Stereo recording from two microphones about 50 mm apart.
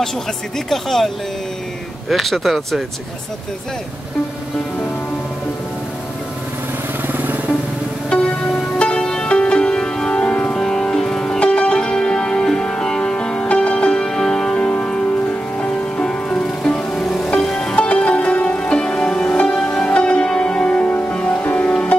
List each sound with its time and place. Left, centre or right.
0.7 s speech: centre
7.1 s vehicle: right
8.1 s music: centre
10.6 s music: centre
17.8 s music: left